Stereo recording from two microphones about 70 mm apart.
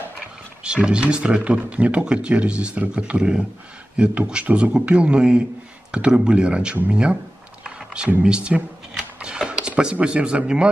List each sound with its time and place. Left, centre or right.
0.7 s speech: centre
7.6 s a sound: centre
8.2 s speech: centre